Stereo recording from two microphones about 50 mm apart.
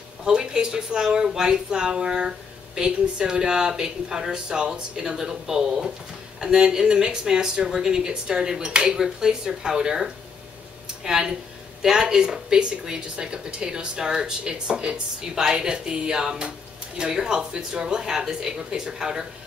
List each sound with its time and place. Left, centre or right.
0.2 s speech: centre